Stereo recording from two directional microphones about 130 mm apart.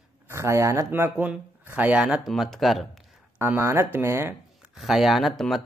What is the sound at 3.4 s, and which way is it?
Speech, 20° right (ahead or behind).